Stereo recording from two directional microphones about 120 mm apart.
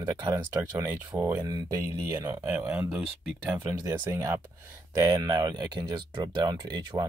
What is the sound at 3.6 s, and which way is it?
Speech, 30° right (ahead or behind).